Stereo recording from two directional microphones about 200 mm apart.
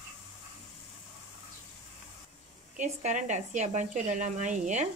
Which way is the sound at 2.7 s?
40° right (ahead or behind).